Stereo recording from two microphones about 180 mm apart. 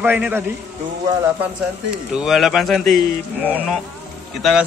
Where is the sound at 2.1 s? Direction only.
Centre (ahead or behind).